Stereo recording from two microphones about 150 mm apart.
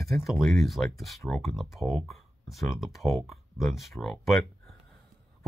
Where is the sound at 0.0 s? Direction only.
Centre (ahead or behind).